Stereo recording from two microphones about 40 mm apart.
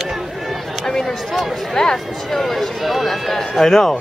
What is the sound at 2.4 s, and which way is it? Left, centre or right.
Run, centre.